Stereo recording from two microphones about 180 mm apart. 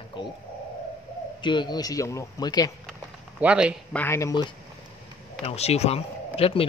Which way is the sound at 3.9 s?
10° left (ahead or behind).